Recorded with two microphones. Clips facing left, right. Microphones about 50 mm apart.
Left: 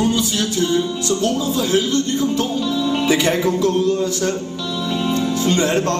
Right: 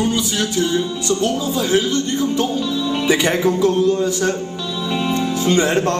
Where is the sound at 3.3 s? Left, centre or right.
Centre.